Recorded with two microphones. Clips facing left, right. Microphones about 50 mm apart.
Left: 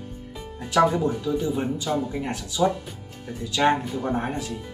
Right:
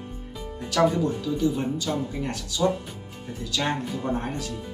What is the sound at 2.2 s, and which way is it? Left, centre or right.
Speech, centre.